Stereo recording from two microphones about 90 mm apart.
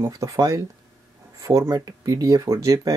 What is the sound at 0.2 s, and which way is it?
Speech, 40° right (ahead or behind).